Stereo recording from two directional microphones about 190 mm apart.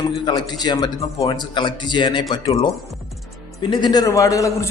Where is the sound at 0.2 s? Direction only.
20° left (ahead or behind).